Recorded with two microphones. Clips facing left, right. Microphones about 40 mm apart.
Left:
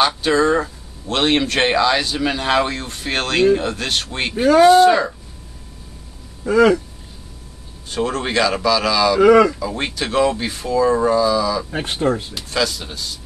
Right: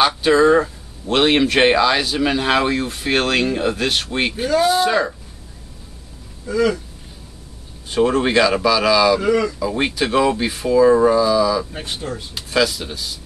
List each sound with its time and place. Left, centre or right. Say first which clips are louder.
0.0 s speech: right 2 dB; centre
6.4 s speech: left 5 dB; left
7.9 s speech: right 4 dB; centre
9.2 s speech: left 7 dB; left
9.6 s speech: right 3 dB; centre
11.7 s speech: left 8 dB; left
12.4 s speech: right 3 dB; centre